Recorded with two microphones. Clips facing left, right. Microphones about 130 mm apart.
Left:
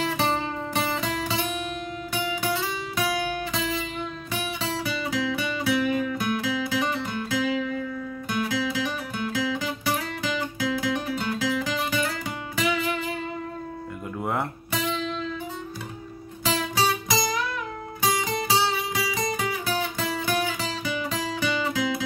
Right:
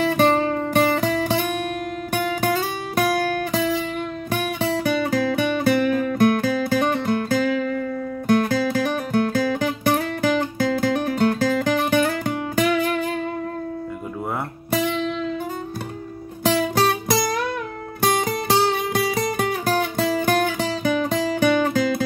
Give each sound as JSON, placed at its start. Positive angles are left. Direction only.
{"t": 0.0, "sound": "music", "side_deg": -60}
{"t": 3.3, "sound": "music", "side_deg": -55}
{"t": 14.7, "sound": "music", "side_deg": -55}
{"t": 16.4, "sound": "music", "side_deg": -60}